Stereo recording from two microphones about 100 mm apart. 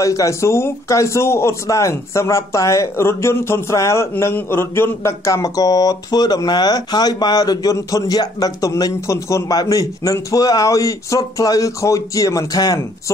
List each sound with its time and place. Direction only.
0.0 s a man's voice: 35° left (ahead or behind)